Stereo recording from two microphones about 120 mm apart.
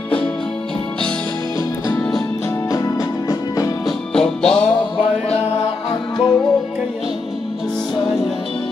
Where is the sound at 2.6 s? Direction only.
30° left (ahead or behind).